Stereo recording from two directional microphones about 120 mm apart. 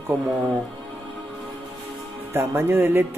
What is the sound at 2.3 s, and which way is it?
Speech, 20° right (ahead or behind).